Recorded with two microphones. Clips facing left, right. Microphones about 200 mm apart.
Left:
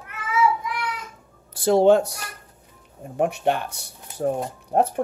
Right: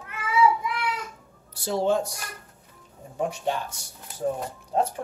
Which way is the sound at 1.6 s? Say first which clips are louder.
Left 8 dB; 60° left (ahead or behind).